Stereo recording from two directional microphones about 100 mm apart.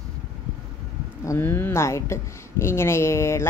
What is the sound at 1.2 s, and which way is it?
A woman's voice, 25° left (ahead or behind).